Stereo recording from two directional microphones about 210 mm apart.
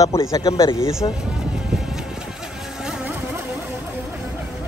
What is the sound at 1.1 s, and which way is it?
Vehicle, 5° right (ahead or behind).